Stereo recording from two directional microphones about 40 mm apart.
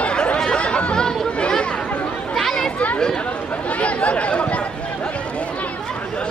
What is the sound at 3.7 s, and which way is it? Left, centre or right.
Speech, left.